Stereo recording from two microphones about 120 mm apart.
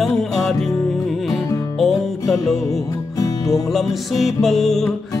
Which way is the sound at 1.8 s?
Centre (ahead or behind).